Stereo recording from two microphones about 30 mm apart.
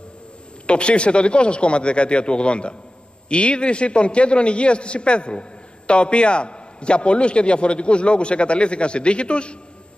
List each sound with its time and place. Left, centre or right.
0.7 s a man's voice: left